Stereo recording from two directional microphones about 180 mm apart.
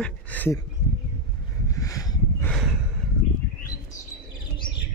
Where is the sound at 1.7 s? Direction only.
20° left (ahead or behind).